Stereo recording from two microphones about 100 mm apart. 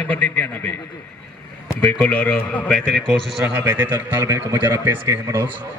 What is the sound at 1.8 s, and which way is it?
A man's voice, 20° left (ahead or behind).